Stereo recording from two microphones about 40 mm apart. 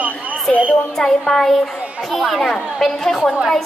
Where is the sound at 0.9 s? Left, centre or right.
Centre.